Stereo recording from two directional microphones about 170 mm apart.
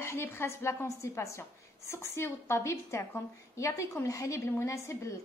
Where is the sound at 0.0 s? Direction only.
15° left (ahead or behind).